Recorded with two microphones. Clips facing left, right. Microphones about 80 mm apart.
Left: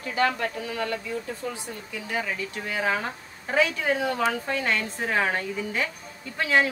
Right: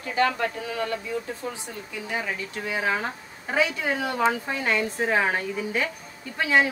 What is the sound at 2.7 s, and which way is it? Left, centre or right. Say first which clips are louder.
Speech: even; right.